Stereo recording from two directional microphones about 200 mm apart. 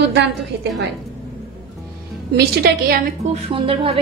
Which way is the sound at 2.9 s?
35° right (ahead or behind).